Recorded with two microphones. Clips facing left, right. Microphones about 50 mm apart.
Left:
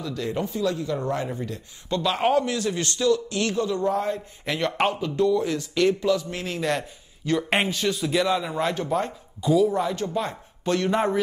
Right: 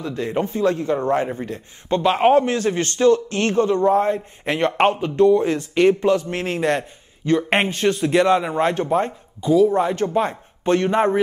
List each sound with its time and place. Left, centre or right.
0.0 s a man's voice: right
6.8 s a man's voice: right
7.5 s a man's voice: right